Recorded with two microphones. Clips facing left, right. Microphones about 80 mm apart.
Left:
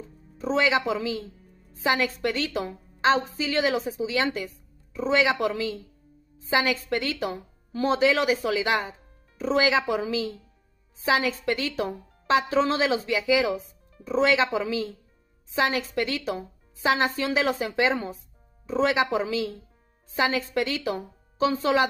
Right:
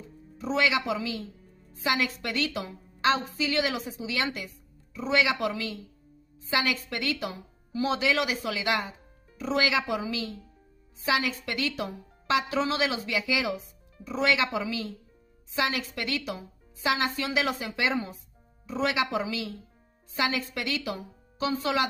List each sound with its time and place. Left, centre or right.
0.4 s a woman's voice: left